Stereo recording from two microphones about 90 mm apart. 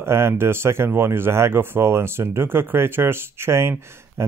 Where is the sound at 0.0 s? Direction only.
30° right (ahead or behind).